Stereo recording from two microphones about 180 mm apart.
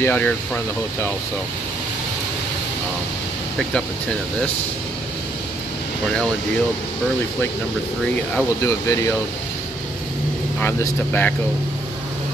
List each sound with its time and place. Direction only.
0.0 s speech: 10° left (ahead or behind)
8.4 s speech: 15° left (ahead or behind)
10.6 s speech: 10° left (ahead or behind)